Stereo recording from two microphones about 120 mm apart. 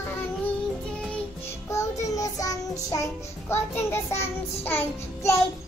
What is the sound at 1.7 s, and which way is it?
Child singing, 25° left (ahead or behind).